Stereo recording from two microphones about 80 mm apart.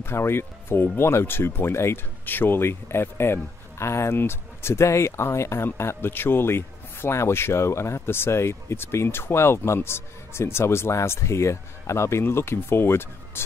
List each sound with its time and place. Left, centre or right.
0.0 s speech: left